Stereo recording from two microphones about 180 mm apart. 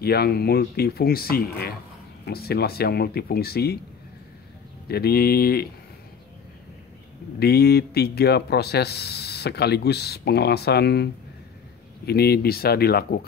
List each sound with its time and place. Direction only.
0.0 s speech: 60° left (ahead or behind)
4.8 s speech: 60° left (ahead or behind)
7.3 s speech: 60° left (ahead or behind)
12.1 s speech: 60° left (ahead or behind)